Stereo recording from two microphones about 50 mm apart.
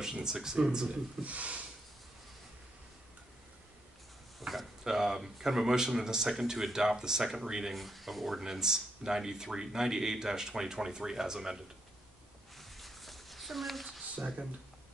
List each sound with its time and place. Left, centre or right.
0.0 s speech: centre
1.2 s speech: right
4.4 s speech: centre
7.7 s speech: centre
12.5 s a sound: centre
14.1 s speech: right